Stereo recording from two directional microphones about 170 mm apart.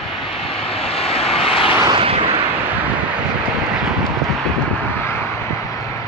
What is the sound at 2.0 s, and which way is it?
Artillery fire, 35° right (ahead or behind).